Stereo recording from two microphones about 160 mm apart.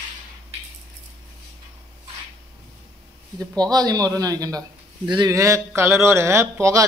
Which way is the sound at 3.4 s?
25° right (ahead or behind).